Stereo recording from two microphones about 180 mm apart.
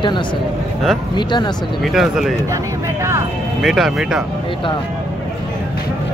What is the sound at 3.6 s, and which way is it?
Speech, centre (ahead or behind).